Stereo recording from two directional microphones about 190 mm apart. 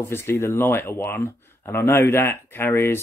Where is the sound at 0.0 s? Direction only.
10° left (ahead or behind).